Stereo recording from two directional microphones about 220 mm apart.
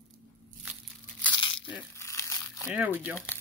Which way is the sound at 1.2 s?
20° left (ahead or behind).